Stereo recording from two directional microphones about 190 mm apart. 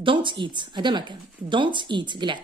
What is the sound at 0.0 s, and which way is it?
Speech, 25° right (ahead or behind).